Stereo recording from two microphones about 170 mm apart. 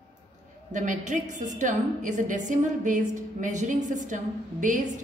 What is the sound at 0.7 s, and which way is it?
A woman's voice, 45° right (ahead or behind).